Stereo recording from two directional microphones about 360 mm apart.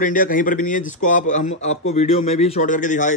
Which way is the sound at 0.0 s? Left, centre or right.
Left.